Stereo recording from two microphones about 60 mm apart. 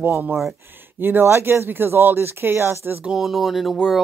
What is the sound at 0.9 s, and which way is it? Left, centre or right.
A woman's voice, right.